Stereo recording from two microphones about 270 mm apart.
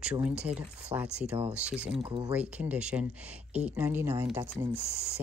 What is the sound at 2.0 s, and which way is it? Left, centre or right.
Speech, centre.